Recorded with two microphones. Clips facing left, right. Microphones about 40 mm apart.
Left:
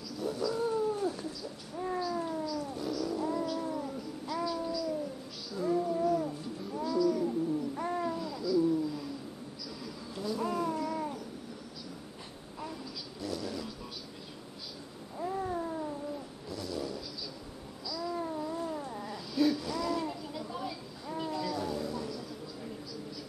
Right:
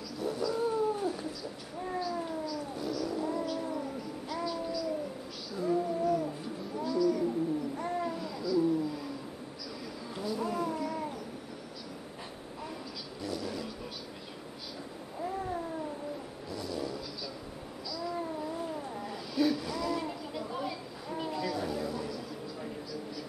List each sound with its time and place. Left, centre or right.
0.2 s cat: centre
4.3 s babbling: centre
10.2 s cat: centre
13.2 s vehicle: centre
15.1 s cat: centre
16.4 s vehicle: centre
17.8 s babbling: centre
18.2 s cat: centre